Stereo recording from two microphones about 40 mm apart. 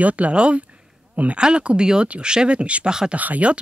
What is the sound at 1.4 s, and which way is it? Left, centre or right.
Speech, right.